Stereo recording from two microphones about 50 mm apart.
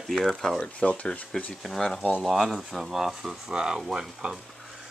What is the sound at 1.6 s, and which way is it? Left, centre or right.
Speech, centre.